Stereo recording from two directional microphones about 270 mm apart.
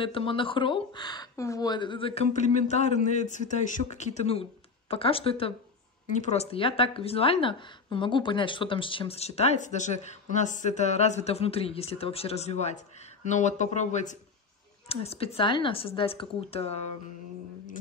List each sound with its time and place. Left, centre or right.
0.0 s speech: centre